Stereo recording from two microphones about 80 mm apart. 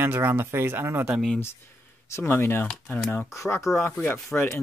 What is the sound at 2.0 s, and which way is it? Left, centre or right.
Speech, left.